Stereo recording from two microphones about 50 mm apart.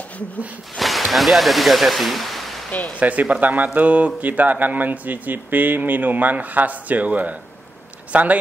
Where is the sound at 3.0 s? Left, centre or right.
Right.